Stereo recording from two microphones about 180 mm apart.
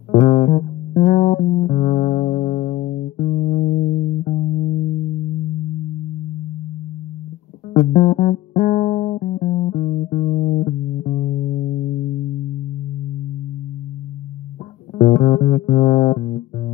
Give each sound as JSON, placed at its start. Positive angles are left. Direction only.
{"t": 0.2, "sound": "music", "side_deg": 45}
{"t": 7.7, "sound": "music", "side_deg": 45}
{"t": 15.0, "sound": "music", "side_deg": 40}